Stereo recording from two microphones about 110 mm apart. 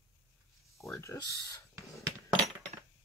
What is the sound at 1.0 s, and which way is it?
Speech, 30° left (ahead or behind).